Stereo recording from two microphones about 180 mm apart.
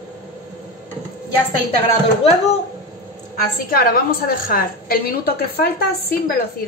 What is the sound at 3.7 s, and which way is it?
A woman's voice, 55° left (ahead or behind).